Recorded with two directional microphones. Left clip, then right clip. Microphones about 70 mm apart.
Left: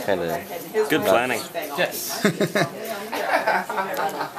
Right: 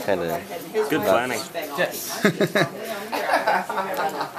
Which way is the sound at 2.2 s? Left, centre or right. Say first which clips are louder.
Right 1 dB; right.